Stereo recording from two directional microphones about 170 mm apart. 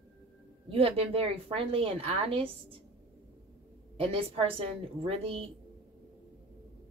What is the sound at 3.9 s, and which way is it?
Speech, 35° right (ahead or behind).